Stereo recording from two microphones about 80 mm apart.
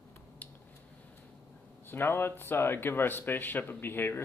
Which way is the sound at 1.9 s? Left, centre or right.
Left.